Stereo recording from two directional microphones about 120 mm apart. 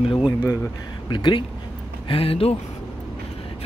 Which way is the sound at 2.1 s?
50° left (ahead or behind).